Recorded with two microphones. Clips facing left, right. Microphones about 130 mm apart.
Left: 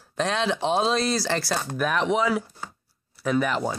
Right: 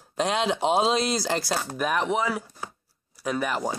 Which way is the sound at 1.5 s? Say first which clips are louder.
Left 1 dB; 5° right (ahead or behind).